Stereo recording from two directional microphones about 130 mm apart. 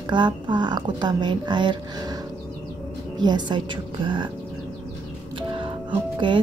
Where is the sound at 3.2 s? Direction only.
35° right (ahead or behind).